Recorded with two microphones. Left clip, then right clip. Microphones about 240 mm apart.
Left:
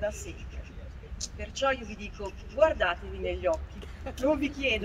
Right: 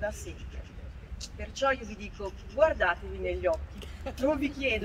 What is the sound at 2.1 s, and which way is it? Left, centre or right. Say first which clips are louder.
Speech: right 3 dB; centre.